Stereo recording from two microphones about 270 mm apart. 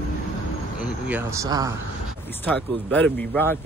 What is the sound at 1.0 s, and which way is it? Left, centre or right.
Speech, centre.